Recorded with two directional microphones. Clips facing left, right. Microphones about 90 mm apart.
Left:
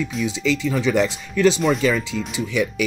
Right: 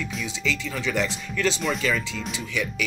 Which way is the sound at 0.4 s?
20° left (ahead or behind).